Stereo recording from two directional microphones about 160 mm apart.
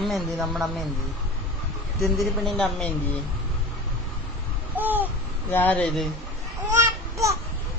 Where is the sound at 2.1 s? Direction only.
Centre (ahead or behind).